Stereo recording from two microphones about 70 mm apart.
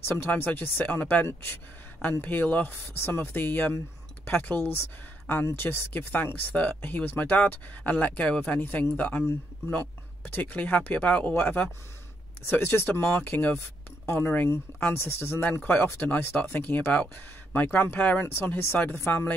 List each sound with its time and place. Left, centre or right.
0.2 s speech: left
10.3 s speech: left